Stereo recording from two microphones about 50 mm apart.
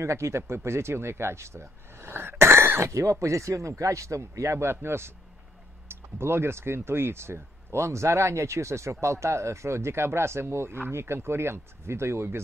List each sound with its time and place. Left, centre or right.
0.0 s speech: right
2.9 s a man's voice: right